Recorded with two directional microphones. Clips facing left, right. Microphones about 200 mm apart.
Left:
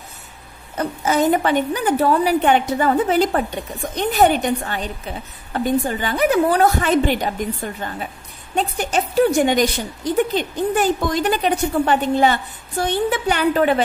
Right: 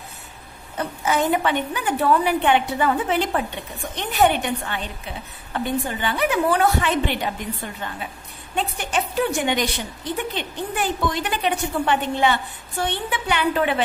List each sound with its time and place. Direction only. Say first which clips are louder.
0.7 s a woman's voice: left 4 dB; 40° left (ahead or behind)